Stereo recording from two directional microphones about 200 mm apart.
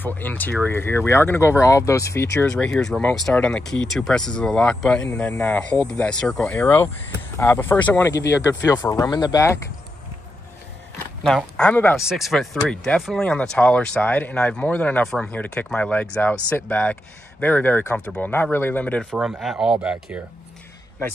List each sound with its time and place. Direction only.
0.0 s speech: 10° left (ahead or behind)
2.4 s speech: 5° left (ahead or behind)
11.2 s speech: 5° left (ahead or behind)
19.1 s speech: 5° right (ahead or behind)